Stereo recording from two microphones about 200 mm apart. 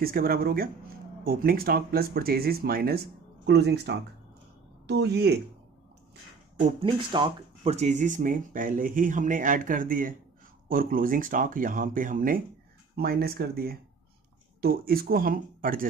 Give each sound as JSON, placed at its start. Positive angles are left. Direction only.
{"t": 0.0, "sound": "speech", "side_deg": -50}
{"t": 6.8, "sound": "speech", "side_deg": -25}